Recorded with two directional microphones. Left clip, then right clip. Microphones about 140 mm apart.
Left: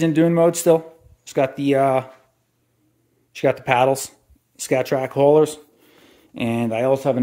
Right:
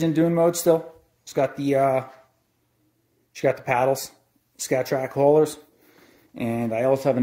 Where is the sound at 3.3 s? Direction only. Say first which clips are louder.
Left 4 dB; 25° left (ahead or behind).